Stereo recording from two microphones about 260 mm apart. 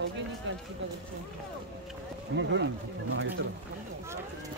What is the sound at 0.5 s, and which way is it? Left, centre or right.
Run, right.